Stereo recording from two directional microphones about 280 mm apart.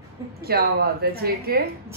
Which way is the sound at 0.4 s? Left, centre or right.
Right.